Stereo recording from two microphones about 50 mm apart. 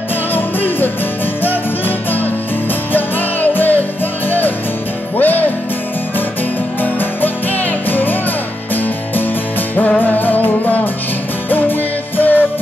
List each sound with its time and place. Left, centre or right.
0.3 s music: left
5.1 s music: left
6.8 s music: left
9.9 s music: left